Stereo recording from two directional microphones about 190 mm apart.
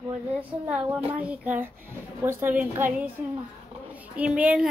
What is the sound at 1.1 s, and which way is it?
A woman's voice, 10° right (ahead or behind).